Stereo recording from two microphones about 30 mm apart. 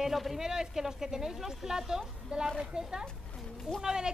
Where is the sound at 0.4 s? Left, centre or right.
Centre.